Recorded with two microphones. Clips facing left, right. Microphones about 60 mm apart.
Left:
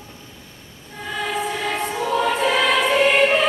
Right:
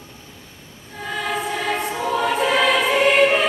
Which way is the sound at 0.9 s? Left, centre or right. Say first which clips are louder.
Even; centre.